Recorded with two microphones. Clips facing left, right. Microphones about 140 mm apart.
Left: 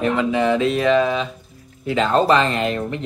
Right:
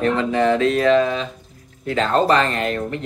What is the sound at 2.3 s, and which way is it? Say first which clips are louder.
Speech: left 1 dB; 20° left (ahead or behind).